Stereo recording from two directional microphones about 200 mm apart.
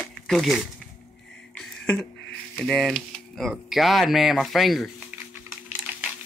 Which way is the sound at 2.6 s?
Centre (ahead or behind).